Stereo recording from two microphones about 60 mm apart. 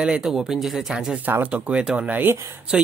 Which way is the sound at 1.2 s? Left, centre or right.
Right.